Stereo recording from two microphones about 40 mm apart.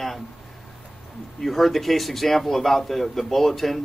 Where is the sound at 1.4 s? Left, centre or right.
Centre.